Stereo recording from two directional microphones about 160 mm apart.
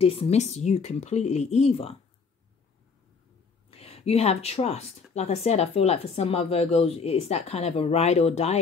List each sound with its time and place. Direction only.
0.0 s speech: 35° left (ahead or behind)
3.7 s speech: 40° left (ahead or behind)